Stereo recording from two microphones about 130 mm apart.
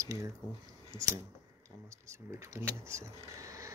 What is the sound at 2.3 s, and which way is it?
Speech, 20° right (ahead or behind).